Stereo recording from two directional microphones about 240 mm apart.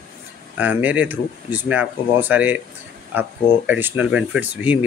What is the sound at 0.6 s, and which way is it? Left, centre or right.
Speech, centre.